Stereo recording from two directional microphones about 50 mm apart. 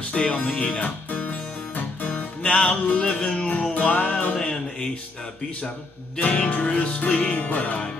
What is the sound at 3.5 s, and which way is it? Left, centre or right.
Music, left.